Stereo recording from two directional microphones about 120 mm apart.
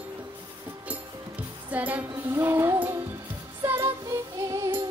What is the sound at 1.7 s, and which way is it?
Music, 10° right (ahead or behind).